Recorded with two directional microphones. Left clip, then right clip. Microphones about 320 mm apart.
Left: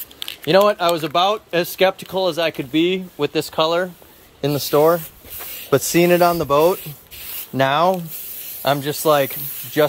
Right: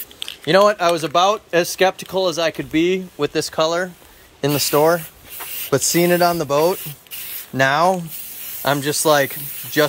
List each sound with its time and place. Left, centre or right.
0.5 s speech: centre